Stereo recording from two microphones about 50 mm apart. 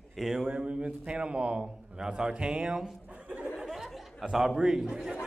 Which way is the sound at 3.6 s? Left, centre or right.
Centre.